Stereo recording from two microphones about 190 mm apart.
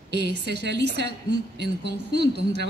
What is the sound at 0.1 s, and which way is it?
A woman's voice, 65° right (ahead or behind).